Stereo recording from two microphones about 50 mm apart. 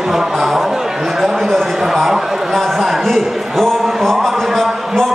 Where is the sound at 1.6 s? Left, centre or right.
Centre.